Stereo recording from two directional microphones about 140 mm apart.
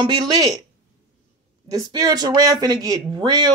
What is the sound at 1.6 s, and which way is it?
Speech, 25° right (ahead or behind).